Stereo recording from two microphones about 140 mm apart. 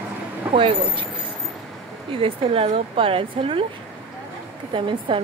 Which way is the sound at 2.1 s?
40° right (ahead or behind).